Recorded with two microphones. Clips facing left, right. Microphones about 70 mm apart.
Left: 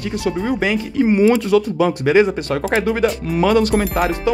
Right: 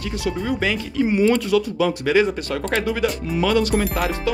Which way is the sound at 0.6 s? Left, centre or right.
Left.